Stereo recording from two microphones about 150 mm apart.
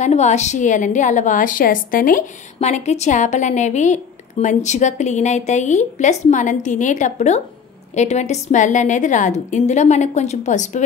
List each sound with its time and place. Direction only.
0.0 s a woman's voice: 50° left (ahead or behind); by 2.2 s 65° left (ahead or behind)
2.6 s a woman's voice: 50° left (ahead or behind)